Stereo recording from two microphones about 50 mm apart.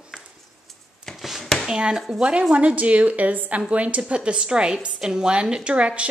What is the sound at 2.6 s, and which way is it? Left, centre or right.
A woman's voice, right.